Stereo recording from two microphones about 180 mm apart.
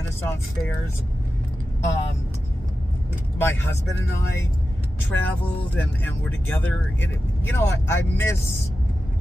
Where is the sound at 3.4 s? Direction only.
10° left (ahead or behind).